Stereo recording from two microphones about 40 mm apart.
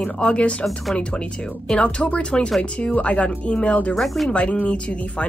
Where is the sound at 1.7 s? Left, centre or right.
Left.